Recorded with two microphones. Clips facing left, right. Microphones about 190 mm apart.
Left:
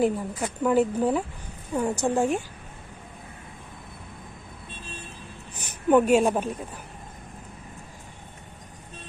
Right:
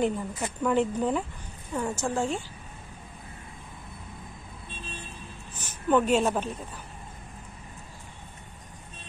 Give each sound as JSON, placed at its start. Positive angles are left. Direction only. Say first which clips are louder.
{"t": 0.0, "sound": "speech", "louder": "left 3 dB", "side_deg": 5}
{"t": 5.6, "sound": "a woman's voice", "louder": "left 4 dB", "side_deg": 15}